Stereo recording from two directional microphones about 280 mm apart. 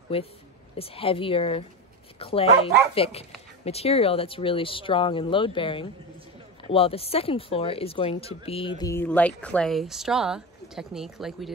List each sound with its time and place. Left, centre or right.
0.1 s speech: left; by 11.5 s centre